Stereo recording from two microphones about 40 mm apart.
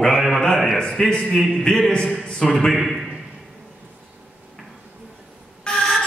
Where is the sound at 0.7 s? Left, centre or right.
Centre.